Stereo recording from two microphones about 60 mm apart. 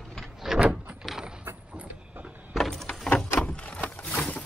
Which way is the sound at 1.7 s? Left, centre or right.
Right.